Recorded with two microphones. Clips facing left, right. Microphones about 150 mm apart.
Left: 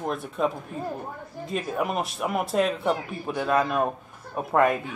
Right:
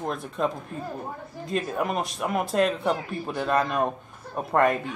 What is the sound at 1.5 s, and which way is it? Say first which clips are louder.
A man's voice: right 1 dB; 5° left (ahead or behind).